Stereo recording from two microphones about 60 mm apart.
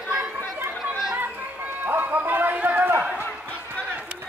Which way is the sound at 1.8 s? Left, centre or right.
Right.